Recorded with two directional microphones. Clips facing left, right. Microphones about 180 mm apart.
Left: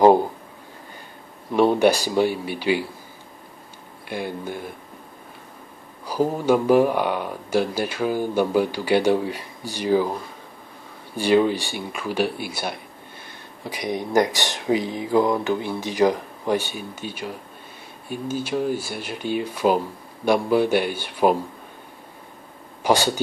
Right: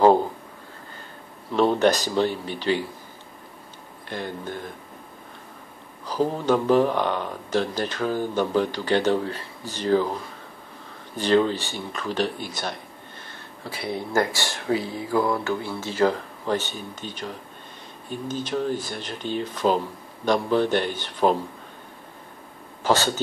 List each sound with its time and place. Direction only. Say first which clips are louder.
1.5 s speech: left 2 dB; 10° left (ahead or behind)
4.1 s speech: left 3 dB; 10° left (ahead or behind)
6.0 s speech: left 2 dB; 10° left (ahead or behind)
11.1 s speech: left 2 dB; 10° left (ahead or behind)
22.8 s speech: left 2 dB; 15° left (ahead or behind)